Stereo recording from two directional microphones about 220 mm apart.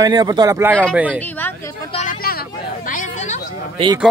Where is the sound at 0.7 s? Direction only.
5° left (ahead or behind).